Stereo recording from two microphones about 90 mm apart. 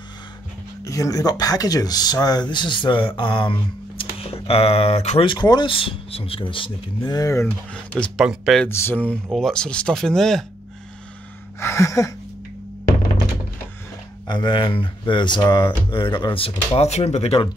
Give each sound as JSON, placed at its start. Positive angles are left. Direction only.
{"t": 0.8, "sound": "speech", "side_deg": 35}
{"t": 4.0, "sound": "speech", "side_deg": 90}
{"t": 5.8, "sound": "speech", "side_deg": 85}
{"t": 7.4, "sound": "speech", "side_deg": 15}
{"t": 8.2, "sound": "speech", "side_deg": 0}
{"t": 8.6, "sound": "speech", "side_deg": 25}
{"t": 9.3, "sound": "speech", "side_deg": 5}
{"t": 11.6, "sound": "a sound", "side_deg": 35}
{"t": 14.2, "sound": "speech", "side_deg": 55}
{"t": 16.3, "sound": "speech", "side_deg": 90}